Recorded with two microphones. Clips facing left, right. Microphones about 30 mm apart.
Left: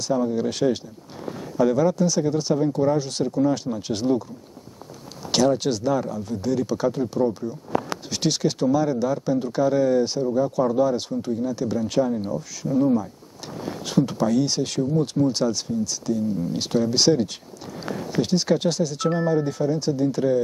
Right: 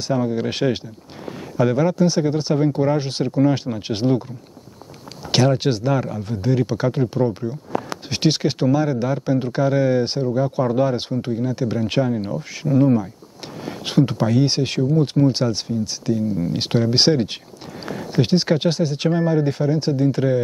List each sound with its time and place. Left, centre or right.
0.0 s speech: right
5.3 s speech: right
13.7 s speech: right